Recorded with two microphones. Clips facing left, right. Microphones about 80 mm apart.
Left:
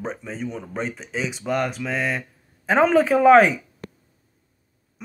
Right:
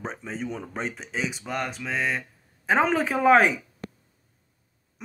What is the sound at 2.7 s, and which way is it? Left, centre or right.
Speech, centre.